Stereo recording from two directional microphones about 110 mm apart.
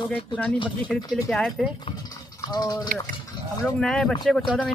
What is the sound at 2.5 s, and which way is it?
Speech, 40° left (ahead or behind).